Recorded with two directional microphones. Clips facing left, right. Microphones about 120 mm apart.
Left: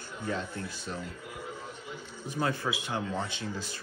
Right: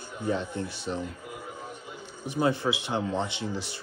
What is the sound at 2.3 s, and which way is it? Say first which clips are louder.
Speech: right 5 dB; 20° right (ahead or behind).